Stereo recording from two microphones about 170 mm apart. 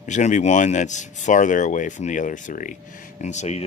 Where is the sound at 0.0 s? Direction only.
45° left (ahead or behind).